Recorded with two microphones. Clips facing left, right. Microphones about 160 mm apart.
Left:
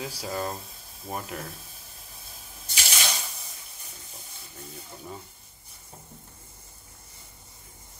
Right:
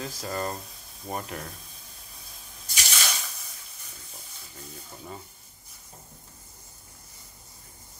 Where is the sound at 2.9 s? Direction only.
20° left (ahead or behind).